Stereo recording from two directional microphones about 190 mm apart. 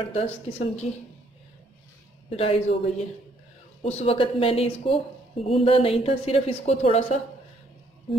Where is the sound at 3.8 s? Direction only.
30° left (ahead or behind).